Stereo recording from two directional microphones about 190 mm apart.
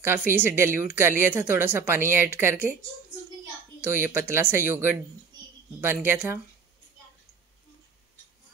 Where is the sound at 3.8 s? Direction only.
10° right (ahead or behind).